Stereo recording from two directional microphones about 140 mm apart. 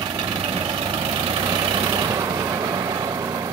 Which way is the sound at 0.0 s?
35° right (ahead or behind).